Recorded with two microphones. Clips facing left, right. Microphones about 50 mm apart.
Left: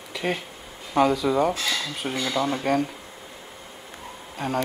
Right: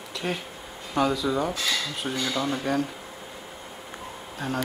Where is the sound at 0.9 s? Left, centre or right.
Centre.